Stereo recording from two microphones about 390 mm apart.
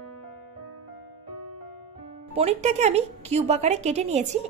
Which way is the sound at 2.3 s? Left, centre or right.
Centre.